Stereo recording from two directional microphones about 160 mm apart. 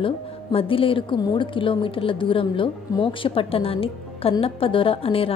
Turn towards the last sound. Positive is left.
turn(degrees=35)  # may be behind; listen again after turning